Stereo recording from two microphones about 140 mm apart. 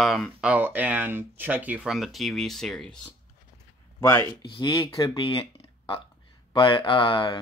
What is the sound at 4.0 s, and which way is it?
Speech, 20° left (ahead or behind).